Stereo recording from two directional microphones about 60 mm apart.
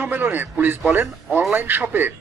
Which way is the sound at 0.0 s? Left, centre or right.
Right.